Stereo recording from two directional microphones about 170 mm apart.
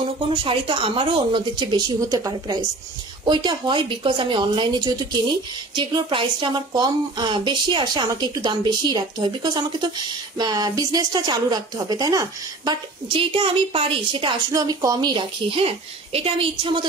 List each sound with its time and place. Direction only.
0.3 s a woman's voice: 30° right (ahead or behind)